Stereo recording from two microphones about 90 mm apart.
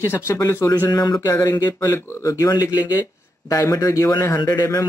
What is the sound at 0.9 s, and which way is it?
Speech, 45° left (ahead or behind).